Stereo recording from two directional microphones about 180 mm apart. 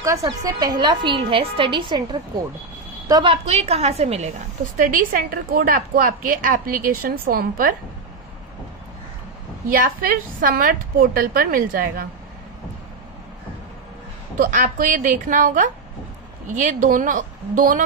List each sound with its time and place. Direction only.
0.0 s a woman's voice: 20° right (ahead or behind)
3.4 s a woman's voice: 35° right (ahead or behind)
4.7 s a woman's voice: 50° right (ahead or behind)
9.8 s a woman's voice: 50° right (ahead or behind)
14.4 s a woman's voice: 45° right (ahead or behind)